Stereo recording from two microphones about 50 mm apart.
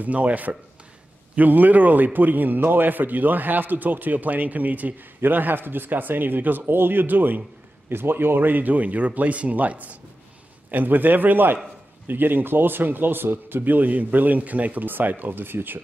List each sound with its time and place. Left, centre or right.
0.0 s a man's voice: right
7.9 s a man's voice: right